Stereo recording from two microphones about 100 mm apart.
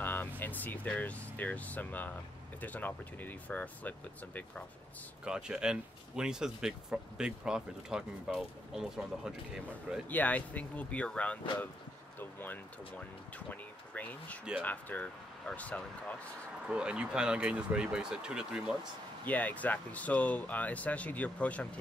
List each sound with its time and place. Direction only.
0.0 s vehicle: 20° left (ahead or behind)
0.4 s speech: 15° left (ahead or behind)
5.2 s speech: 10° right (ahead or behind)
10.0 s speech: 15° left (ahead or behind)
16.6 s speech: 10° right (ahead or behind)
19.2 s speech: 15° left (ahead or behind)